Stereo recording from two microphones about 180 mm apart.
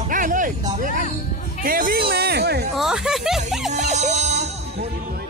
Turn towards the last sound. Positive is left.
turn(degrees=-40)  # may be behind; listen again after turning